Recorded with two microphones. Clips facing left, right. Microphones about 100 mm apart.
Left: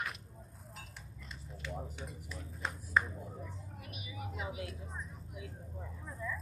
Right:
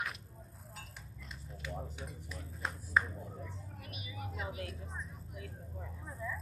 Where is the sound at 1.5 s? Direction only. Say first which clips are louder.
Even; centre (ahead or behind).